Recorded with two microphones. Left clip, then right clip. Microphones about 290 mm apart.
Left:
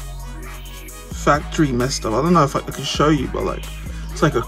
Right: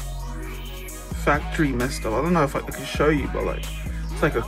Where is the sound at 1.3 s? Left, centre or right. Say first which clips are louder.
Left 4 dB; centre.